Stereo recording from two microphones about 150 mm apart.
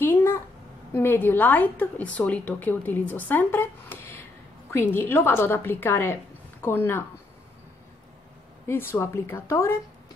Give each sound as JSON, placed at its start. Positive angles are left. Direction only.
{"t": 0.0, "sound": "a sound", "side_deg": 15}
{"t": 0.9, "sound": "a woman's voice", "side_deg": 15}
{"t": 8.6, "sound": "a woman's voice", "side_deg": 15}